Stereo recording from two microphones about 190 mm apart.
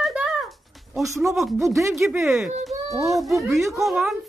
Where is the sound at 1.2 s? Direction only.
Centre (ahead or behind).